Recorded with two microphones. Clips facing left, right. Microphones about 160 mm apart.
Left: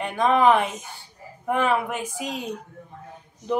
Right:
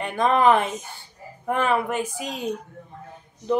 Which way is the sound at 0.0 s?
10° left (ahead or behind).